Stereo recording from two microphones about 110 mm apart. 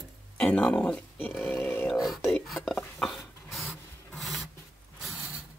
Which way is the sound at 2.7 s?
5° left (ahead or behind).